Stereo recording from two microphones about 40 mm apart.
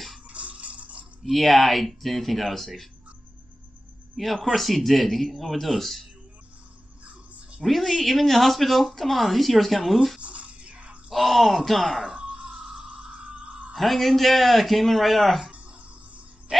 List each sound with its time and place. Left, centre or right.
0.3 s water: right
1.2 s speech: centre
4.2 s speech: centre
7.6 s speech: centre
10.2 s music: right
11.1 s groan: centre
13.7 s speech: centre